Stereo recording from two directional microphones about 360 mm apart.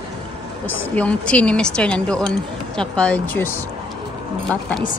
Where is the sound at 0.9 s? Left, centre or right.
Centre.